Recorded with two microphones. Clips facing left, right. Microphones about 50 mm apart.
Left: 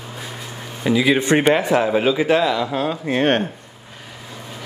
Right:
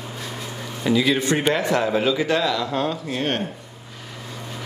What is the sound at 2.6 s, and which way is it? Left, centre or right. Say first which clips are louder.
Speech: left 2 dB; centre.